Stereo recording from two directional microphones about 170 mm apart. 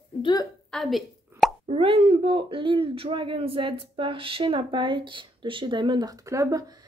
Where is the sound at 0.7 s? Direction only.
Centre (ahead or behind).